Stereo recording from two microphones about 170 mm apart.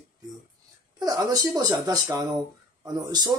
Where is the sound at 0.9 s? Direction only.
25° right (ahead or behind).